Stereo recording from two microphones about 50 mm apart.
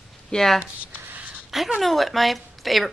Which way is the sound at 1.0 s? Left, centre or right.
Right.